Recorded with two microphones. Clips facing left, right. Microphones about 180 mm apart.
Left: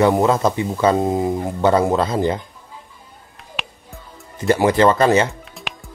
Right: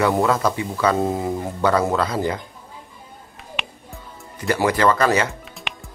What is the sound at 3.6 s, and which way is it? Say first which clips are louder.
Music: left 1 dB; centre (ahead or behind).